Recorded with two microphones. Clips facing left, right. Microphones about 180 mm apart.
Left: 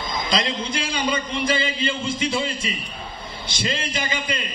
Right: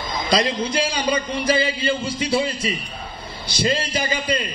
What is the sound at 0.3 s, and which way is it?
Speech, 35° right (ahead or behind).